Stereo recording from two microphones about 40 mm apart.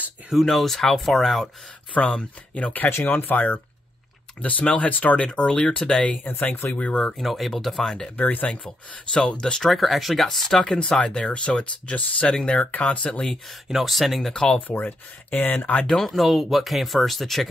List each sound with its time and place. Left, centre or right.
0.4 s speech: centre
2.0 s speech: left
2.9 s speech: left
7.2 s speech: centre
8.2 s speech: left
8.6 s speech: centre
9.7 s speech: centre
10.6 s speech: centre; by 13.2 s left
13.7 s speech: centre
14.3 s speech: centre
14.7 s speech: left
15.6 s speech: left
15.9 s speech: centre